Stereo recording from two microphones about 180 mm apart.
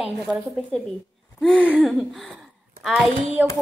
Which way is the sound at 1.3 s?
5° left (ahead or behind).